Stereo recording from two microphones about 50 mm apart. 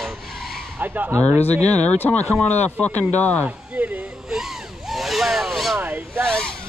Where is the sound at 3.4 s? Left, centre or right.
Right.